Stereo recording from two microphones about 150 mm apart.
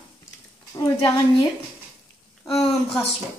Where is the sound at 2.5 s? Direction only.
Centre (ahead or behind).